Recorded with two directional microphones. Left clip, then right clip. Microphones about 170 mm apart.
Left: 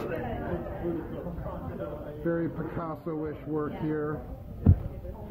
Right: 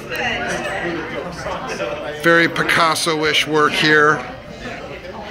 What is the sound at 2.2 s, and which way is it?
Speech, 40° right (ahead or behind).